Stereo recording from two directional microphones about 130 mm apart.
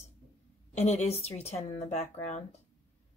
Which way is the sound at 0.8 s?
55° left (ahead or behind).